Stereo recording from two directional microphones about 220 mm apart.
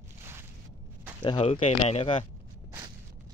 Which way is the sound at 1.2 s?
25° left (ahead or behind).